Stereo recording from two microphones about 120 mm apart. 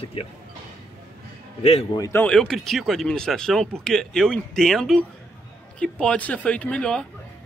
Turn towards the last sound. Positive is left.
turn(degrees=5)  # may be behind; listen again after turning